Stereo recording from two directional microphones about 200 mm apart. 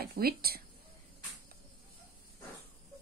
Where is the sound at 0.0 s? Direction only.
50° right (ahead or behind).